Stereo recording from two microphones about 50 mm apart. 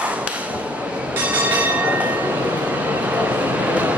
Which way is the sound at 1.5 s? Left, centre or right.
Right.